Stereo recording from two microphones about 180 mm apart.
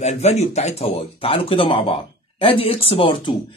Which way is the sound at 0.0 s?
40° left (ahead or behind).